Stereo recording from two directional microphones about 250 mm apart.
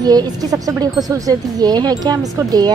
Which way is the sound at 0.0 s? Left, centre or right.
Centre.